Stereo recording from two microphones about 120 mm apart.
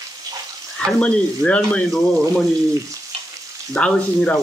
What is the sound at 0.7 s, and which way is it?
Speech, 10° left (ahead or behind).